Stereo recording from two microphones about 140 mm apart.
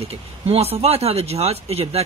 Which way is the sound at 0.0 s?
45° right (ahead or behind).